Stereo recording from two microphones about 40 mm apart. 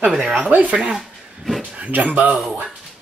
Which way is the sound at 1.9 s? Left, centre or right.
Right.